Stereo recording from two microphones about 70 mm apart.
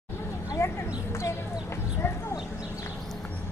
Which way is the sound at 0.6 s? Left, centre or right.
Left.